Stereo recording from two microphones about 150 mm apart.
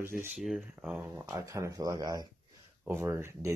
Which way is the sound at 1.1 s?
20° right (ahead or behind).